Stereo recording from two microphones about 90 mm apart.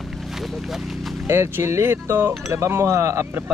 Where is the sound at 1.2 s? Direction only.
30° right (ahead or behind).